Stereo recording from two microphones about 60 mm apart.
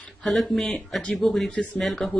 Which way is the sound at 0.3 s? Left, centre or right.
Centre.